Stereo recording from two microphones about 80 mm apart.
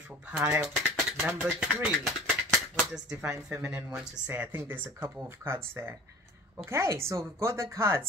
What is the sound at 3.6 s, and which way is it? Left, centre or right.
Speech, right.